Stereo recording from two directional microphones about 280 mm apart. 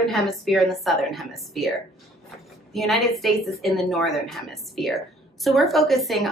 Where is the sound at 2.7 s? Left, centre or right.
Centre.